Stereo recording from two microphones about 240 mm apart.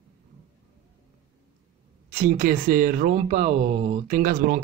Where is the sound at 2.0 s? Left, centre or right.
Right.